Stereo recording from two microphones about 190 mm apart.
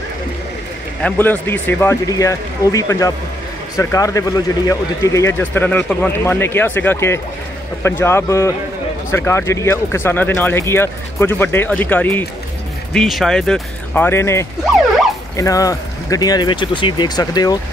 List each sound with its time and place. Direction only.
1.0 s speech: 10° left (ahead or behind)